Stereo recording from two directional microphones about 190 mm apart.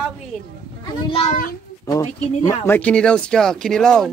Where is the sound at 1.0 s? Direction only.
30° left (ahead or behind).